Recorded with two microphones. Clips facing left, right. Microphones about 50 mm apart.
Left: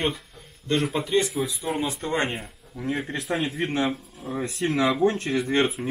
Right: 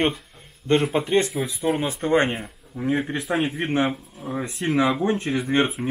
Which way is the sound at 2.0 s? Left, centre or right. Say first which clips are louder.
Right 6 dB; right.